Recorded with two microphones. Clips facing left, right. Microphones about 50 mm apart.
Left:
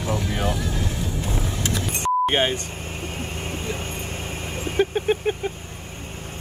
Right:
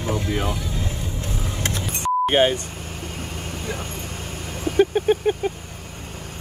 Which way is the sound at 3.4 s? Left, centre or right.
Left.